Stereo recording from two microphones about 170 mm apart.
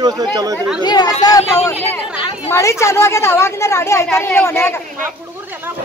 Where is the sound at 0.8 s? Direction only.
25° left (ahead or behind).